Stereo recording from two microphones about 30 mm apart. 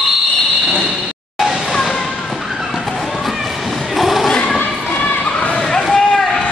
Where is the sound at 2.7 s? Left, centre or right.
Centre.